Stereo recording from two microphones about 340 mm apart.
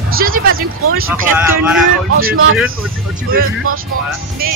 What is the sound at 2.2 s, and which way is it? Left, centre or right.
Speech, right.